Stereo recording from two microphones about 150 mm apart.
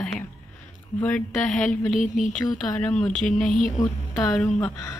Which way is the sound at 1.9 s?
60° left (ahead or behind).